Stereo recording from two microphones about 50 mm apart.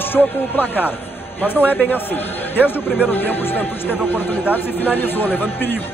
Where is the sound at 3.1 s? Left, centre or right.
Left.